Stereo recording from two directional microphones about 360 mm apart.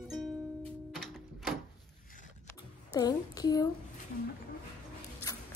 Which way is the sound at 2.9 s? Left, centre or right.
Centre.